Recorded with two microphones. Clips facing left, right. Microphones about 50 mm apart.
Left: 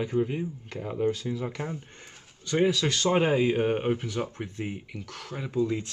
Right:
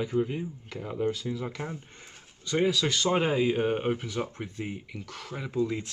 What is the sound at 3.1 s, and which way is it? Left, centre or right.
Speech, centre.